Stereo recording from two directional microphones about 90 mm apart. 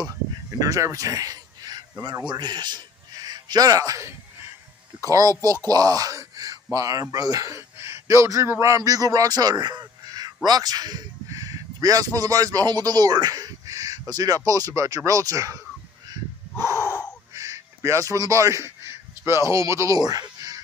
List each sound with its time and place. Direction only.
0.6 s a man's voice: 40° right (ahead or behind)
5.7 s speech: 45° right (ahead or behind)
16.8 s gasp: 30° left (ahead or behind)
17.3 s a sound: 35° right (ahead or behind)